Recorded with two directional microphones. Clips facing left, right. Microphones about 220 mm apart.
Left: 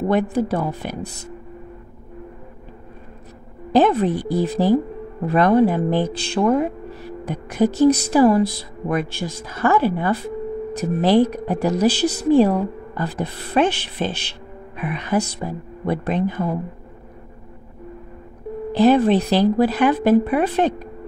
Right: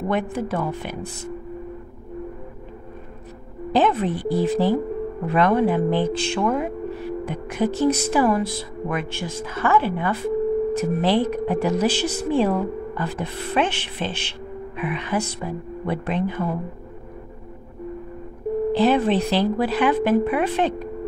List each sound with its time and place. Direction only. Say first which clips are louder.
0.1 s a woman's voice: left 4 dB; 35° left (ahead or behind)
3.7 s a woman's voice: left 4 dB; 40° left (ahead or behind)
18.7 s a woman's voice: left 5 dB; 40° left (ahead or behind)